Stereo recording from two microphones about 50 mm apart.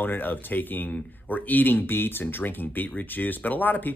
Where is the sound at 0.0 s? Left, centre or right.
Left.